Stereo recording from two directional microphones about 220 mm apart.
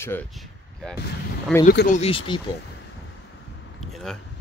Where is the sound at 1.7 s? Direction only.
50° left (ahead or behind).